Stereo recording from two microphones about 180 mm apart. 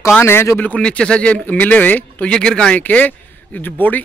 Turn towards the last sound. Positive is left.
turn(degrees=10)  # may be behind; listen again after turning